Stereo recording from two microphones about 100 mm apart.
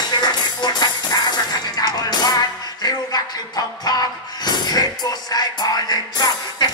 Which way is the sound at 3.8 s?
45° left (ahead or behind).